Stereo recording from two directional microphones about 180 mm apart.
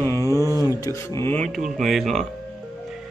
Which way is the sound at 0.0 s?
15° left (ahead or behind).